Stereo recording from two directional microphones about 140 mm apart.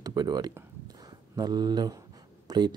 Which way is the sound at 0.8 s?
30° right (ahead or behind).